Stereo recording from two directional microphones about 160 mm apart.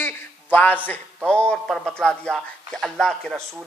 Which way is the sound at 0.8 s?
10° left (ahead or behind).